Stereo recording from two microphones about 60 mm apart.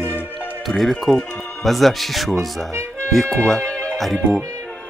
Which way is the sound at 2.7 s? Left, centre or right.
Right.